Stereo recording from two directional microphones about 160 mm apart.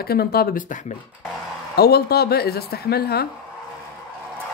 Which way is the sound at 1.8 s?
80° left.